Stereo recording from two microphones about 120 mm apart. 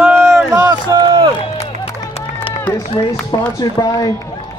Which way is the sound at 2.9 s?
45° left (ahead or behind).